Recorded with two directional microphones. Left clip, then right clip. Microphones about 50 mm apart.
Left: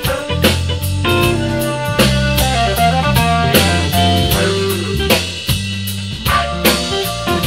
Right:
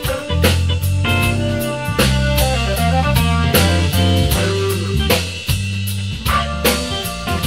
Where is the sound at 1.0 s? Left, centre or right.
Centre.